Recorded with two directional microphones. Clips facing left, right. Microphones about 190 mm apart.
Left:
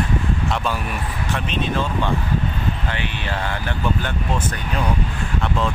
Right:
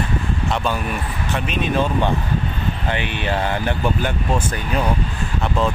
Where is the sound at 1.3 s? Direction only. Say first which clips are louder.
Right 2 dB; 10° right (ahead or behind).